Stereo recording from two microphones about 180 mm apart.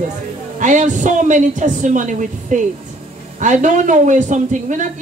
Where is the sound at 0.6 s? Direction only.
45° right (ahead or behind).